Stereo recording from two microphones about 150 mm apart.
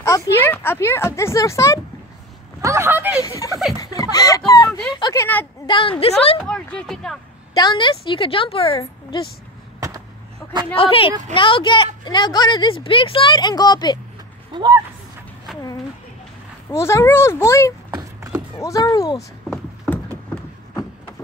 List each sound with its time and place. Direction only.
0.0 s speech: 15° left (ahead or behind)
2.6 s speech: 20° right (ahead or behind)
3.2 s speech: 20° left (ahead or behind)
5.2 s speech: 10° left (ahead or behind)
5.7 s speech: 35° left (ahead or behind)
6.4 s speech: 5° left (ahead or behind)
7.5 s speech: 30° left (ahead or behind)
9.8 s a sound: 20° right (ahead or behind)
10.8 s speech: 40° left (ahead or behind)
14.5 s speech: 30° right (ahead or behind)
16.7 s speech: 20° left (ahead or behind)